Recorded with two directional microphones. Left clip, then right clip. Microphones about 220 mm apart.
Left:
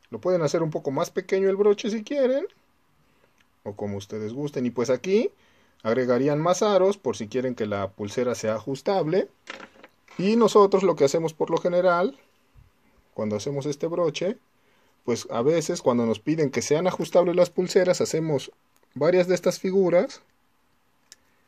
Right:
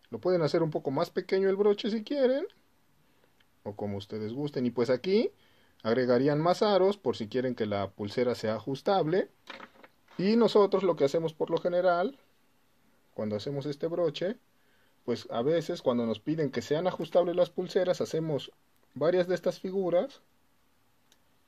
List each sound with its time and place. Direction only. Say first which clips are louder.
0.0 s speech: left 4 dB; centre (ahead or behind)
3.6 s speech: left 4 dB; centre (ahead or behind); by 20.2 s 35° left (ahead or behind)